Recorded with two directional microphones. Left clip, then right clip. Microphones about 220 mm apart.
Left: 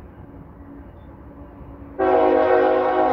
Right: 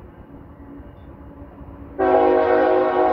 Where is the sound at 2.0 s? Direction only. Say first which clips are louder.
Right 1 dB; 25° left (ahead or behind).